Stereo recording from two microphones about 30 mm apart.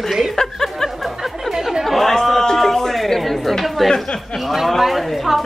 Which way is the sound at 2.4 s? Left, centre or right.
Centre.